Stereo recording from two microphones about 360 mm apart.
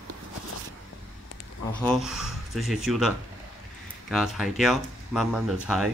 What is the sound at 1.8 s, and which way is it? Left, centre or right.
Speech, centre.